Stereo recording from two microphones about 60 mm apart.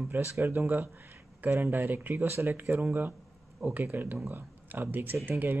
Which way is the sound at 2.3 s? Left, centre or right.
Right.